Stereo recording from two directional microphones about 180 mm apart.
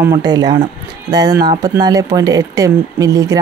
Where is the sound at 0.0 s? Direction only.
20° right (ahead or behind).